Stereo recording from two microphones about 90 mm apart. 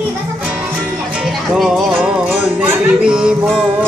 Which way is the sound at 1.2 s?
5° right (ahead or behind).